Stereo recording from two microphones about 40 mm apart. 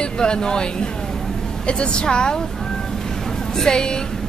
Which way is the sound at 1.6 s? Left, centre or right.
Left.